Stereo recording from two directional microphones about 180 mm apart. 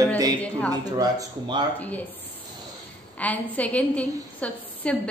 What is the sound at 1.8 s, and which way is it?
Speech, 10° left (ahead or behind).